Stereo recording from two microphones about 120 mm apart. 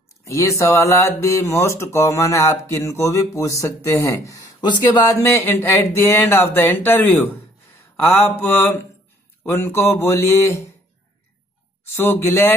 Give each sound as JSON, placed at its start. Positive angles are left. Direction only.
{"t": 0.2, "sound": "speech", "side_deg": 25}
{"t": 7.9, "sound": "mantra", "side_deg": 20}
{"t": 9.4, "sound": "speech", "side_deg": 20}
{"t": 11.8, "sound": "speech", "side_deg": 20}